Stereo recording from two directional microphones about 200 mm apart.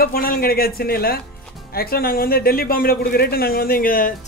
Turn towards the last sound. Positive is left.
turn(degrees=45)  # may be behind; listen again after turning